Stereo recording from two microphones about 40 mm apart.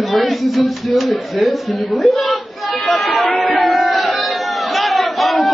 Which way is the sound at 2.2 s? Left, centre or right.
Centre.